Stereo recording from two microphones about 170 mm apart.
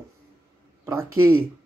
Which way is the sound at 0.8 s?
15° right (ahead or behind).